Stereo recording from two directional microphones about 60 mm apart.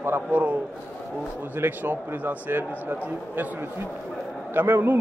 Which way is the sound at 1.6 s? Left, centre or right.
Right.